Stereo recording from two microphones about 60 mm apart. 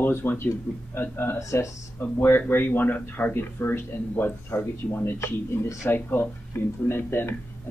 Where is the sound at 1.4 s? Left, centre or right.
Left.